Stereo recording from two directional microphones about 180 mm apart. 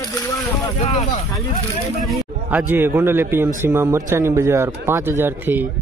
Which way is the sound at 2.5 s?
10° right (ahead or behind).